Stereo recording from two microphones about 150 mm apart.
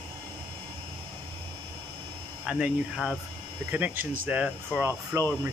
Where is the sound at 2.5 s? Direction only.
5° right (ahead or behind).